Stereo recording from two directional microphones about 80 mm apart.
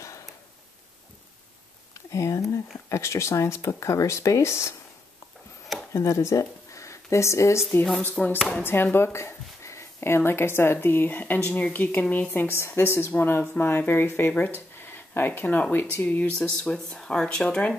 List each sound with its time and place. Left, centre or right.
2.0 s a sound: left
2.9 s speech: left
5.9 s speech: left
8.0 s speech: centre
16.5 s speech: centre